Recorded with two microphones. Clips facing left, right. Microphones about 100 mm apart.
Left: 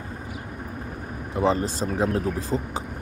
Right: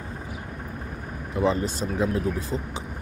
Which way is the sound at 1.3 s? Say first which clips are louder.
Left 1 dB; 35° left (ahead or behind).